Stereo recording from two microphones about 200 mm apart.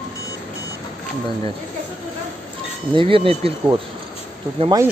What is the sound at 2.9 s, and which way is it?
Speech, 25° right (ahead or behind).